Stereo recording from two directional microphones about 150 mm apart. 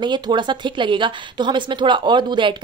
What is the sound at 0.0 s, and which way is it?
A woman's voice, 30° right (ahead or behind).